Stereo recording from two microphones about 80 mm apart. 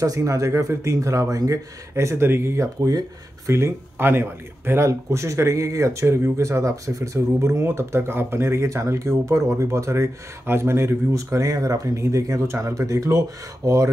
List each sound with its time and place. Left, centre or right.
0.0 s speech: right